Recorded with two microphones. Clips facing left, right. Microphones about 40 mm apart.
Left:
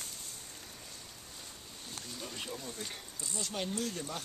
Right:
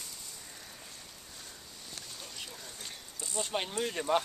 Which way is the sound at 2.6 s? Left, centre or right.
Centre.